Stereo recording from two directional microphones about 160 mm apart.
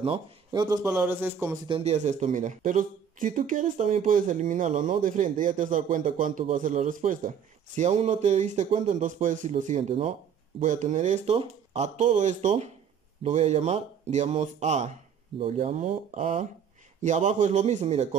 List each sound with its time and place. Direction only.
0.0 s speech: 30° right (ahead or behind); by 1.6 s 15° right (ahead or behind)
1.7 s speech: 40° right (ahead or behind)